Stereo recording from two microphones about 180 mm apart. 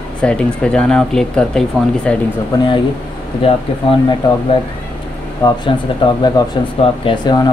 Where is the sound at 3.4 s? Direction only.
30° left (ahead or behind).